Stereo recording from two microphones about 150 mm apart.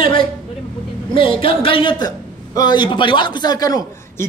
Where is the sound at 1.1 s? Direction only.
35° left (ahead or behind).